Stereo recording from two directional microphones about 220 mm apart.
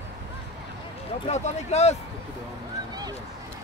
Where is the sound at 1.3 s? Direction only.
30° left (ahead or behind).